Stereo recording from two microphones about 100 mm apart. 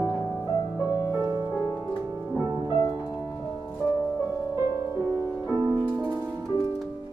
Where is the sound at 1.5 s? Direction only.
35° left (ahead or behind).